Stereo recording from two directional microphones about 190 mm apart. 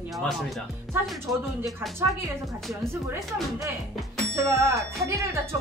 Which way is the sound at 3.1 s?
15° right (ahead or behind).